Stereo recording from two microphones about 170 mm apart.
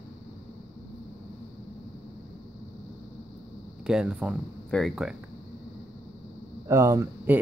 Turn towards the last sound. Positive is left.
turn(degrees=-10)  # may be behind; listen again after turning